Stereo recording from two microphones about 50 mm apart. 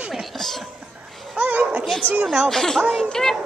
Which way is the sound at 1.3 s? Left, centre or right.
Right.